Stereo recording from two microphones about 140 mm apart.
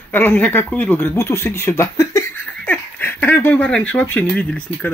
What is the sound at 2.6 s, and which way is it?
Speech, 10° left (ahead or behind).